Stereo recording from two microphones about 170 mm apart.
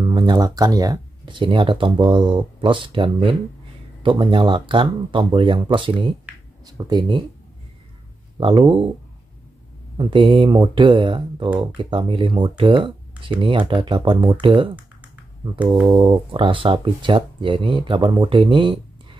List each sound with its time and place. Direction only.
0.0 s speech: 25° right (ahead or behind)
8.4 s speech: 30° right (ahead or behind)
9.9 s speech: 30° right (ahead or behind)
15.7 s speech: 25° right (ahead or behind)